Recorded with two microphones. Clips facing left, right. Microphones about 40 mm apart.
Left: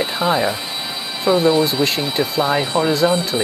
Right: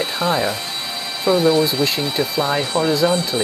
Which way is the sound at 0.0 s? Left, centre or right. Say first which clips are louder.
Left 2 dB; centre.